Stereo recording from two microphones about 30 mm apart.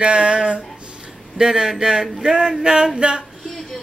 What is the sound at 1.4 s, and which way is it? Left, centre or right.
Speech, centre.